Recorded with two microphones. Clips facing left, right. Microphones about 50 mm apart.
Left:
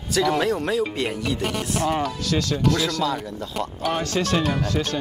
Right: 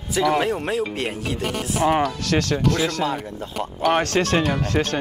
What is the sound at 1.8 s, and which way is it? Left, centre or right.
Speech, right.